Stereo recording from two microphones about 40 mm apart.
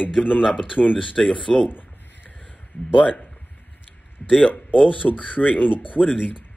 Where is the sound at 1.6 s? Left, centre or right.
Left.